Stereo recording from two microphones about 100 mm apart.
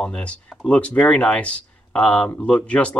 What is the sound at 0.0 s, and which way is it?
Speech, 10° left (ahead or behind).